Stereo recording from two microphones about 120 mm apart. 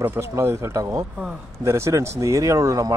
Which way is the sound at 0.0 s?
25° right (ahead or behind).